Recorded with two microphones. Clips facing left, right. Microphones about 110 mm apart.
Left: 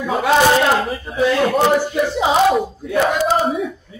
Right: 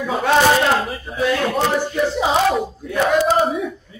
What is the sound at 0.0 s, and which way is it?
A man's voice, 5° left (ahead or behind).